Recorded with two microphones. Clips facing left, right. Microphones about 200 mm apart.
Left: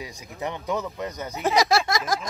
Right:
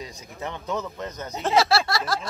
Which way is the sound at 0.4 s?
15° left (ahead or behind).